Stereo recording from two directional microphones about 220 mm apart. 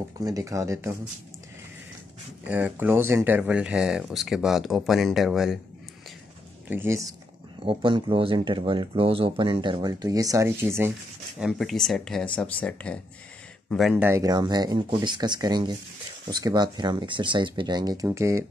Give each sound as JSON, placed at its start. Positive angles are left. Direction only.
{"t": 0.2, "sound": "speech", "side_deg": -15}
{"t": 2.4, "sound": "speech", "side_deg": -10}
{"t": 6.7, "sound": "speech", "side_deg": -10}